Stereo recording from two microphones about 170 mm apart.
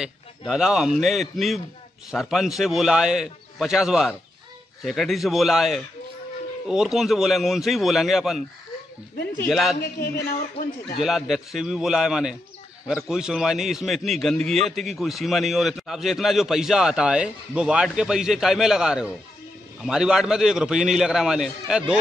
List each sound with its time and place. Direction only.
0.5 s a man's voice: centre (ahead or behind)
9.5 s a man's voice: centre (ahead or behind)
9.8 s speech: 60° left (ahead or behind)
11.0 s a man's voice: centre (ahead or behind)